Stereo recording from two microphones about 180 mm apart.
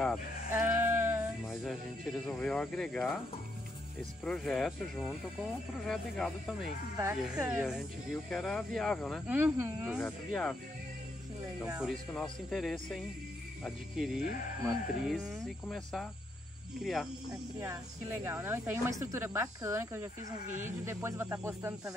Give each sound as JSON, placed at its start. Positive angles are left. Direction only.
{"t": 0.5, "sound": "speech", "side_deg": -10}
{"t": 4.2, "sound": "speech", "side_deg": 5}
{"t": 7.0, "sound": "speech", "side_deg": -15}
{"t": 7.4, "sound": "speech", "side_deg": -5}
{"t": 9.3, "sound": "speech", "side_deg": -10}
{"t": 9.9, "sound": "speech", "side_deg": 5}
{"t": 11.8, "sound": "speech", "side_deg": 0}
{"t": 17.6, "sound": "speech", "side_deg": -15}
{"t": 20.4, "sound": "speech", "side_deg": -45}
{"t": 20.8, "sound": "speech", "side_deg": -15}